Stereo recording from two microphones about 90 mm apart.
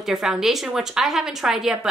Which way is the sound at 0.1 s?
5° right (ahead or behind).